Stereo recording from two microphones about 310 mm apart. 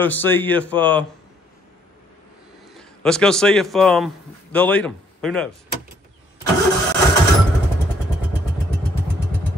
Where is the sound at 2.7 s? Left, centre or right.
Centre.